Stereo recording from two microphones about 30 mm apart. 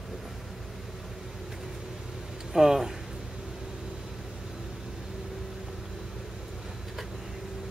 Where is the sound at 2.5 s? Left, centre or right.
Centre.